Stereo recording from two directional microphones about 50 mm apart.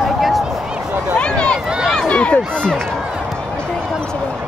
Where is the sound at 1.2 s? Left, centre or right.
Left.